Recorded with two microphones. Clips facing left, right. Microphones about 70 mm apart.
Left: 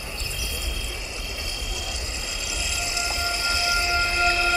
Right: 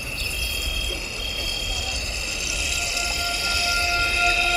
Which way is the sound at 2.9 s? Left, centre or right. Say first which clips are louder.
Left 2 dB; left.